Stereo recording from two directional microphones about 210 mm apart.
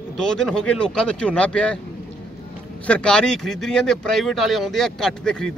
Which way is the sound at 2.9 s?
5° left (ahead or behind).